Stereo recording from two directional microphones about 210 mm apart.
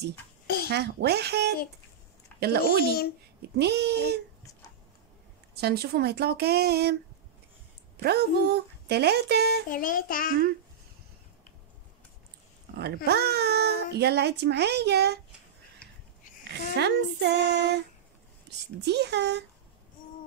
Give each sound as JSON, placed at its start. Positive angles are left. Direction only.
{"t": 0.7, "sound": "a child's voice", "side_deg": -50}
{"t": 5.5, "sound": "a child's voice", "side_deg": -50}
{"t": 8.0, "sound": "a child's voice", "side_deg": -50}
{"t": 9.7, "sound": "child singing", "side_deg": 40}
{"t": 12.7, "sound": "a child's voice", "side_deg": -50}
{"t": 16.4, "sound": "a child's voice", "side_deg": -55}
{"t": 18.9, "sound": "a child's voice", "side_deg": -55}